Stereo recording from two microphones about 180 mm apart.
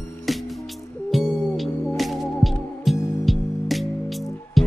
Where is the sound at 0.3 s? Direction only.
Centre (ahead or behind).